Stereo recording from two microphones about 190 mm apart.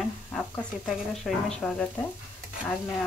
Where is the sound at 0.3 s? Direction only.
Centre (ahead or behind).